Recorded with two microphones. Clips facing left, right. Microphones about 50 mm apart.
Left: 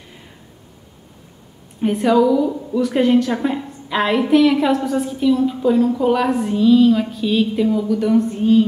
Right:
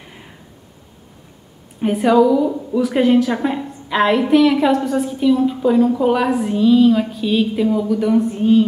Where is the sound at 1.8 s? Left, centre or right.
Centre.